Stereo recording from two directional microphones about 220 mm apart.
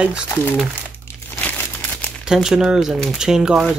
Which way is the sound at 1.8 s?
5° left (ahead or behind).